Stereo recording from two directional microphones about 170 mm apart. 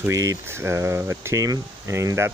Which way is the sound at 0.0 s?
15° right (ahead or behind).